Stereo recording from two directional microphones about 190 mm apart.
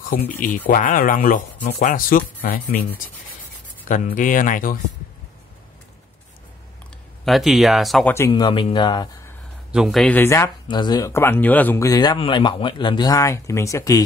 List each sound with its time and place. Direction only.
0.1 s speech: 50° left (ahead or behind)
7.2 s speech: centre (ahead or behind)
8.3 s a man's voice: 25° left (ahead or behind)
9.7 s speech: centre (ahead or behind); by 14.0 s 15° left (ahead or behind)